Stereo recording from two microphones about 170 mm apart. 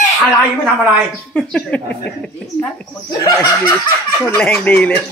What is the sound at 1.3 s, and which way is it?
Speech, 5° left (ahead or behind).